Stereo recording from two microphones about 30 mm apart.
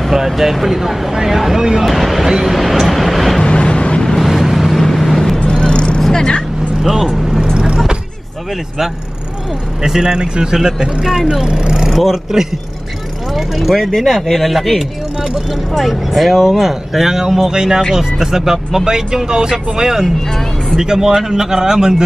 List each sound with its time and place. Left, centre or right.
0.1 s speech: centre
1.9 s speech: centre
2.2 s speech: centre
2.5 s speech: centre
3.4 s vehicle: left
4.4 s vehicle: centre
4.7 s vehicle: centre
5.5 s vehicle: left
6.8 s speech: centre
7.5 s vehicle: right
9.8 s speech: right
11.9 s speech: centre